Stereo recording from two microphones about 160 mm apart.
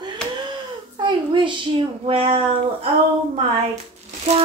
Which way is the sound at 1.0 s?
30° right (ahead or behind).